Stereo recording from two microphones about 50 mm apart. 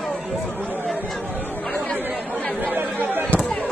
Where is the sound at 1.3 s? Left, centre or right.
Left.